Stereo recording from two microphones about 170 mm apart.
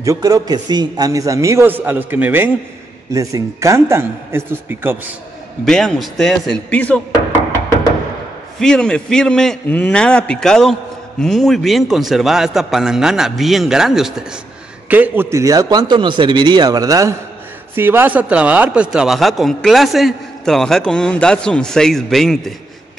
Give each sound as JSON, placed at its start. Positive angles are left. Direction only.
{"t": 0.0, "sound": "a man's voice", "side_deg": -20}
{"t": 5.7, "sound": "a man's voice", "side_deg": 5}
{"t": 8.5, "sound": "a man's voice", "side_deg": 5}